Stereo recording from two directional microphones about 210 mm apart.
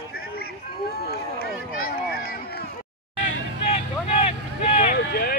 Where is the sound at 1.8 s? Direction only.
50° left (ahead or behind).